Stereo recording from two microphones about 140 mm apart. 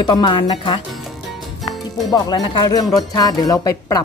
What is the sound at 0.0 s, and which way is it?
Speech, 30° left (ahead or behind).